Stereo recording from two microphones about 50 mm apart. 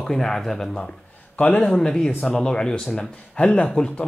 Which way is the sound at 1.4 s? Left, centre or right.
Left.